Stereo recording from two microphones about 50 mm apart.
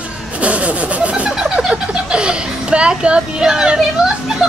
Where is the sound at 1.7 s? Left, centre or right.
Centre.